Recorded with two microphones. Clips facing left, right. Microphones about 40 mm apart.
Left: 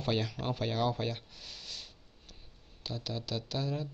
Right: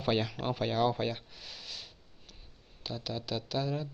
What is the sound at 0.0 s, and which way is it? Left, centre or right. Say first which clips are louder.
Speech: right 2 dB; centre.